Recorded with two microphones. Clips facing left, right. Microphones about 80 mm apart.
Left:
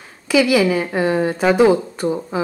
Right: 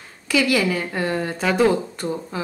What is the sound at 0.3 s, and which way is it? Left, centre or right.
A woman's voice, centre.